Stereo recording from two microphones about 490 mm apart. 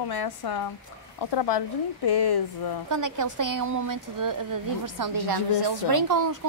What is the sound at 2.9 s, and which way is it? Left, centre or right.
A woman's voice, right.